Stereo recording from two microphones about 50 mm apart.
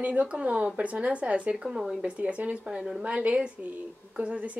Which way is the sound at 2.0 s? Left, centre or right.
Right.